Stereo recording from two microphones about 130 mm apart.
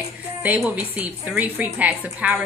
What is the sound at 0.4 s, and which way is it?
A woman's voice, 10° right (ahead or behind).